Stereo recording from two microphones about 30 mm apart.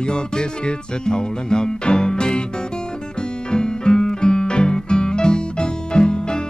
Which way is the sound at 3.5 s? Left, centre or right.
Left.